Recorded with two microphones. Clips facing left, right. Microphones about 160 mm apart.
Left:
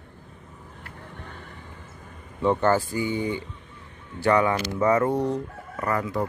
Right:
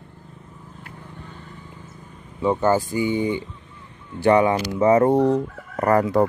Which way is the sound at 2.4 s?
10° right (ahead or behind).